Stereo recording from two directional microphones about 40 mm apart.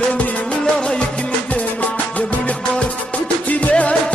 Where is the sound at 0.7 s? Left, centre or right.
Left.